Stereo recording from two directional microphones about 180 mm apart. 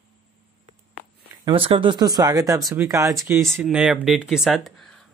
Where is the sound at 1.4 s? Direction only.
30° right (ahead or behind); by 4.7 s centre (ahead or behind).